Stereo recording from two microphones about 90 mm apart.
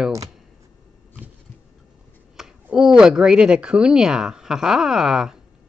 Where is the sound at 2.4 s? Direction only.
5° right (ahead or behind).